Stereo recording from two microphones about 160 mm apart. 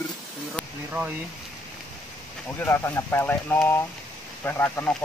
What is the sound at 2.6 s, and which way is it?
Speech, 15° left (ahead or behind).